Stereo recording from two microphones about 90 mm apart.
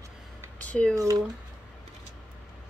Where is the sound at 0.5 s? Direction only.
15° left (ahead or behind).